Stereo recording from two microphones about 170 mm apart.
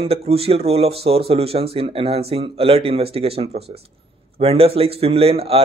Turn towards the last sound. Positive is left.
turn(degrees=-35)  # may be behind; listen again after turning